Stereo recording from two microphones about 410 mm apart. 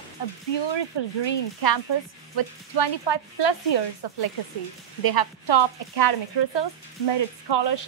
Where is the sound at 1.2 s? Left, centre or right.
Left.